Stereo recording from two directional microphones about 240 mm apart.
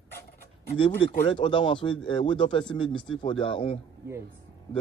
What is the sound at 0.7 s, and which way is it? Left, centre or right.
Speech, left.